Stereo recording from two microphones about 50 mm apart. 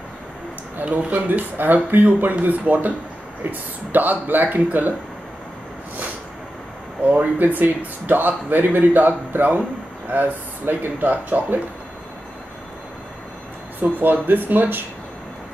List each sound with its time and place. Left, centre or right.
0.8 s speech: right
7.1 s speech: right
13.7 s speech: right